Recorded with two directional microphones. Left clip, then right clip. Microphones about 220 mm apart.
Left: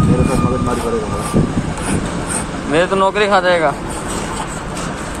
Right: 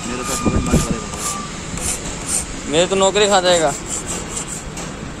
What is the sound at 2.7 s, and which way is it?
Speech, 20° right (ahead or behind).